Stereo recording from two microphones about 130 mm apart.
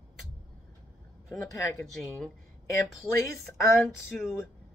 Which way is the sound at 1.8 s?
10° left (ahead or behind).